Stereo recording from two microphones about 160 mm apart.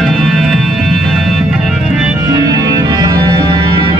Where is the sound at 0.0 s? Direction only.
Centre (ahead or behind).